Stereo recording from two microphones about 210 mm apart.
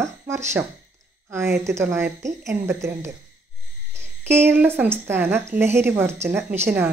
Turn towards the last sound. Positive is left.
turn(degrees=-10)  # may be behind; listen again after turning